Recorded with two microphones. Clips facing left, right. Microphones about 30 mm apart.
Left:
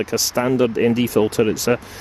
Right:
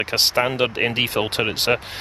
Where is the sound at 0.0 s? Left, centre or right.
Right.